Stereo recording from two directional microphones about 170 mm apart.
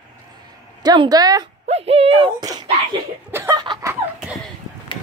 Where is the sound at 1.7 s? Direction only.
35° right (ahead or behind).